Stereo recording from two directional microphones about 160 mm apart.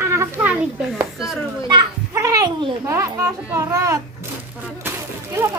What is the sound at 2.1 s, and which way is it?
A child's voice, 20° right (ahead or behind).